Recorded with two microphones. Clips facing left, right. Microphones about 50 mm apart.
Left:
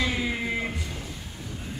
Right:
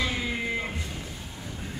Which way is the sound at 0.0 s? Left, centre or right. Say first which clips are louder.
Left 2 dB; centre.